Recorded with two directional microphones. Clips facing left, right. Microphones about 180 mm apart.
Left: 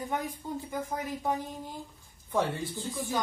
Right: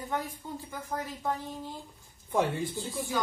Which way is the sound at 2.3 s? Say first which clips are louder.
Right 1 dB; 15° right (ahead or behind).